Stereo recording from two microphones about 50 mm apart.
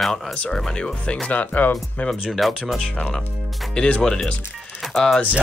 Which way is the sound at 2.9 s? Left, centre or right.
Centre.